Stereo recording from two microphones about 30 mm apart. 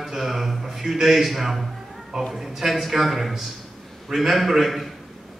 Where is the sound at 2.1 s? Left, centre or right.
Centre.